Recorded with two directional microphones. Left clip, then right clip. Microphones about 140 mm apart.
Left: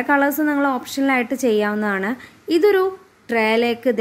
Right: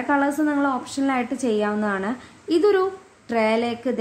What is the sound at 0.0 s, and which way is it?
A woman's voice, 25° left (ahead or behind).